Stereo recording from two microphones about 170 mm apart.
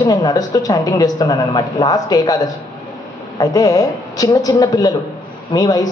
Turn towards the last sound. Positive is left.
turn(degrees=20)  # may be behind; listen again after turning